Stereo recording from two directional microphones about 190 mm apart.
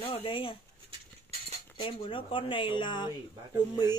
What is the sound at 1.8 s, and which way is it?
Speech, 25° left (ahead or behind).